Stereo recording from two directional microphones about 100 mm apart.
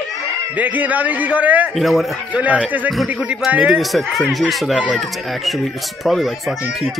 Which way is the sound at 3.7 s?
Centre (ahead or behind).